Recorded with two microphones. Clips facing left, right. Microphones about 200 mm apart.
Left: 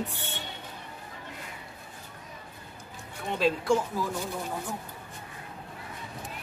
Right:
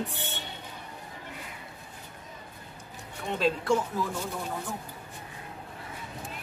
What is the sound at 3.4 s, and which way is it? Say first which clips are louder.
Speech: left 1 dB; 5° left (ahead or behind).